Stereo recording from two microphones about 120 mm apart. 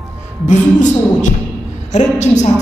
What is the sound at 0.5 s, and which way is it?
Speech, 90° left.